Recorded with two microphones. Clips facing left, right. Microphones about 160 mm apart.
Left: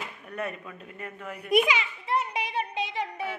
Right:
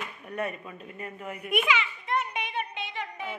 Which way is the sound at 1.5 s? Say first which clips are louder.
Left 4 dB; 35° left (ahead or behind).